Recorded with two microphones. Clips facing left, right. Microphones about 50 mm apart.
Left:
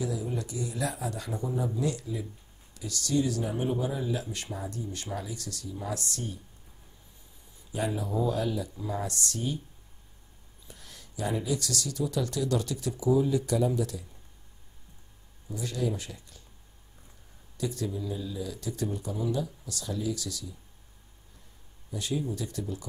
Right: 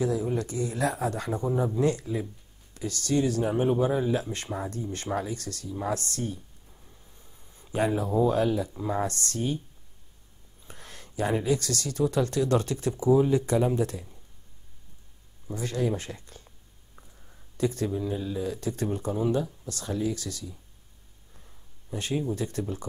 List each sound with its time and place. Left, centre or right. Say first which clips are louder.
0.0 s speech: right 6 dB; right
7.5 s speech: right 5 dB; right
10.7 s speech: right 4 dB; right
15.4 s speech: right 3 dB; right
17.6 s speech: right 5 dB; right
21.9 s speech: right 3 dB; right